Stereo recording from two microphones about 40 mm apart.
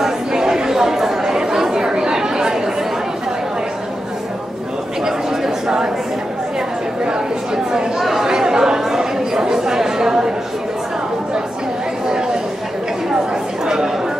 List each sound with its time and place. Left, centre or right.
0.0 s chatter: centre
5.0 s a sound: centre
7.1 s chatter: centre
13.3 s chatter: centre